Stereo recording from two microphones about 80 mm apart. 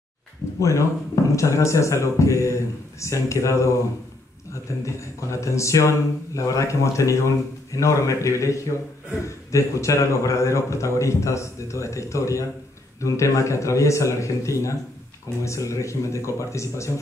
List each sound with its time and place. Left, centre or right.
0.6 s a man's voice: left